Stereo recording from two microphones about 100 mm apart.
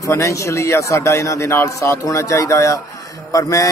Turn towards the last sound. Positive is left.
turn(degrees=35)  # may be behind; listen again after turning